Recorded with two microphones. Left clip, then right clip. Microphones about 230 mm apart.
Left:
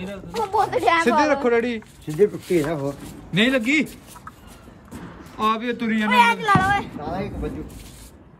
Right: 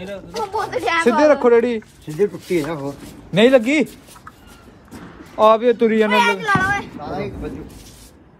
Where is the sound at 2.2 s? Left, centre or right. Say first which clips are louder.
Even; centre.